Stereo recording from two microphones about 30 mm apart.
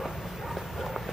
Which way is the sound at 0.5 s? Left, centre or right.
Centre.